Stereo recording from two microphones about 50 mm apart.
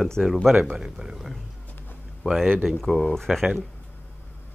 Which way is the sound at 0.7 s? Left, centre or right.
Centre.